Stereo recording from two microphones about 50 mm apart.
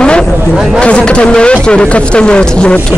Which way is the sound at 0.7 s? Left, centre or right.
Left.